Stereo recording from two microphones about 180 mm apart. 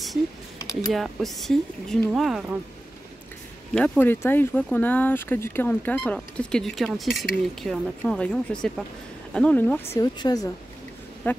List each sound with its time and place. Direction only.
0.9 s speech: centre (ahead or behind)
3.7 s speech: 5° left (ahead or behind); by 10.5 s 20° left (ahead or behind)
11.3 s speech: 10° left (ahead or behind)